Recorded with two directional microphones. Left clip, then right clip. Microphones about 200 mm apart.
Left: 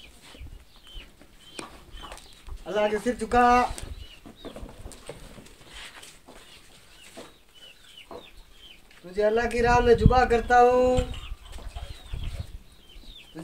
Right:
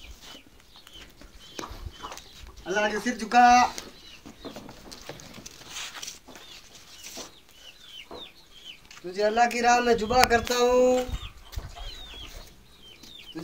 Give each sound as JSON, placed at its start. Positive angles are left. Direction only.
{"t": 2.6, "sound": "speech", "side_deg": 15}
{"t": 5.7, "sound": "a sound", "side_deg": -55}
{"t": 9.1, "sound": "speech", "side_deg": 15}